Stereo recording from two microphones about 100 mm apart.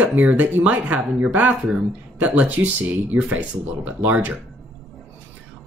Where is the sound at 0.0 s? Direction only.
15° right (ahead or behind).